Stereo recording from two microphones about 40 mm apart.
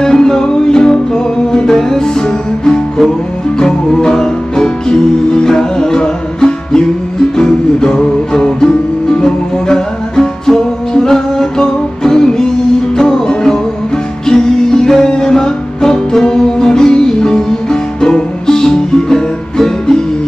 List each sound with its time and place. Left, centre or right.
0.0 s music: centre